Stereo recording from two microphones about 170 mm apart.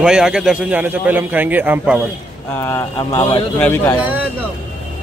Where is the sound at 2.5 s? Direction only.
15° left (ahead or behind).